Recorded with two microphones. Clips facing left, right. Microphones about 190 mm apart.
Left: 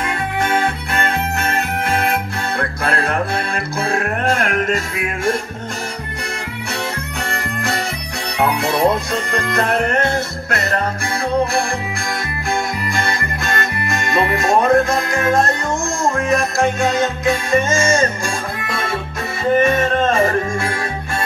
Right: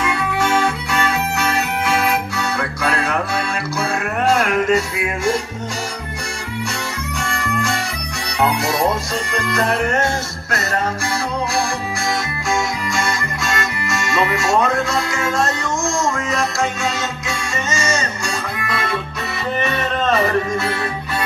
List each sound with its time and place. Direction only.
0.4 s music: 55° left (ahead or behind)
4.3 s music: 55° left (ahead or behind)
9.1 s music: 55° left (ahead or behind)
12.9 s music: 55° left (ahead or behind)